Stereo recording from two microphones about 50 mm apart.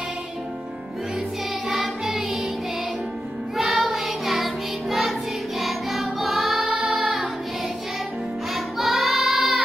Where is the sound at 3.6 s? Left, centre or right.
Centre.